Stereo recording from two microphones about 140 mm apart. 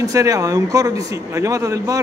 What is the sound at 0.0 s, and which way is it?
Speech, 25° right (ahead or behind).